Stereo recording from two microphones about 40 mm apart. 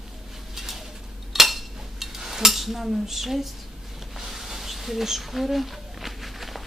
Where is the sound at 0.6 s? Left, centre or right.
Centre.